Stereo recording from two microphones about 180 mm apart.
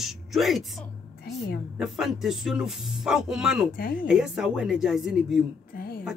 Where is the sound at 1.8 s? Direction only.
Centre (ahead or behind).